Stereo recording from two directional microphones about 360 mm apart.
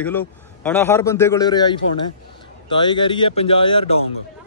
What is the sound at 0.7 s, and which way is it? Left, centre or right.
A man's voice, centre.